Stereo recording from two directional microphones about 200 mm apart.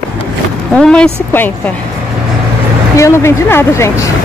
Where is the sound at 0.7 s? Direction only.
5° left (ahead or behind).